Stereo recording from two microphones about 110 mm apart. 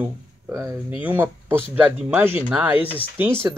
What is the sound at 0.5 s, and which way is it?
Speech, 30° right (ahead or behind).